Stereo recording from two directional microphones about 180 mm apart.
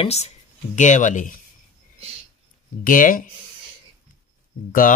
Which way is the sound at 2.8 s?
50° left (ahead or behind).